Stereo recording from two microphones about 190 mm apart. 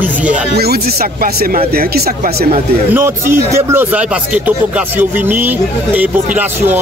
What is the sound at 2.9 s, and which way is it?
Speech, 10° right (ahead or behind).